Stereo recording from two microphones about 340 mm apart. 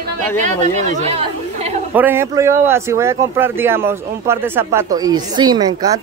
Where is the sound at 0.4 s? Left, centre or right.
Right.